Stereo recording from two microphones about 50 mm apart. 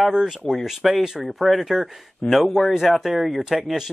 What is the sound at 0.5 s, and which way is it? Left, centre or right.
Speech, centre.